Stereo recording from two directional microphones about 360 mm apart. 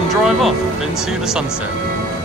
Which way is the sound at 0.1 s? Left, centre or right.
Centre.